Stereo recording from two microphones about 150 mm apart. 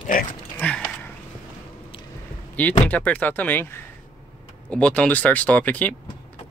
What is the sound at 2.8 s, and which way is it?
Speech, 10° left (ahead or behind).